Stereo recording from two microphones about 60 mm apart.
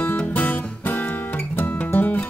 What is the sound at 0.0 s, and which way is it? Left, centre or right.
Music, left.